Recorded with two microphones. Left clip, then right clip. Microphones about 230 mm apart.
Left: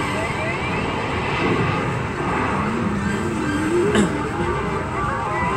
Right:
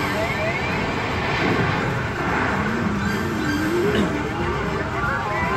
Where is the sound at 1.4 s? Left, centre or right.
Centre.